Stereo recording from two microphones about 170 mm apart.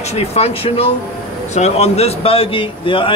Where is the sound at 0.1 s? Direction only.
40° left (ahead or behind).